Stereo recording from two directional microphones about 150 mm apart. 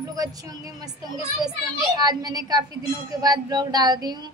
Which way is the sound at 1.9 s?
25° right (ahead or behind).